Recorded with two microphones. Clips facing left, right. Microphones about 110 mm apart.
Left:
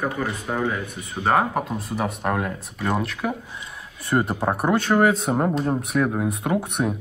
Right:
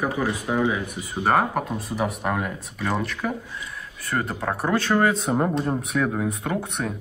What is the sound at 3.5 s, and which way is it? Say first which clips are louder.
Speech: right 1 dB; 25° left (ahead or behind).